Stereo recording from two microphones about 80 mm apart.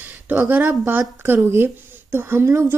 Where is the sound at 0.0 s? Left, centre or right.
Right.